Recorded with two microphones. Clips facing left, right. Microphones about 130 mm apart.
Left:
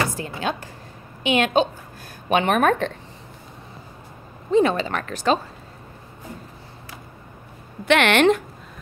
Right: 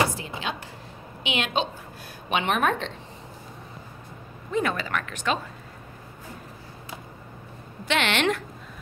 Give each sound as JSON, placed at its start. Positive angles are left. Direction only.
{"t": 0.4, "sound": "a woman's voice", "side_deg": 45}
{"t": 4.5, "sound": "speech", "side_deg": 25}
{"t": 7.8, "sound": "a woman's voice", "side_deg": 60}